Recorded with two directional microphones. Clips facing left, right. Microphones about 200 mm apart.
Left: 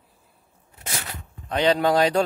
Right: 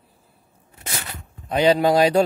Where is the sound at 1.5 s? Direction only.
10° right (ahead or behind).